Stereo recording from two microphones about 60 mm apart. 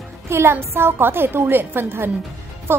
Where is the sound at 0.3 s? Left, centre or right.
Right.